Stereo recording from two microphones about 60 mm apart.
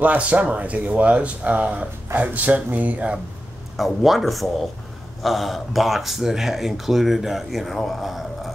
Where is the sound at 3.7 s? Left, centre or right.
Centre.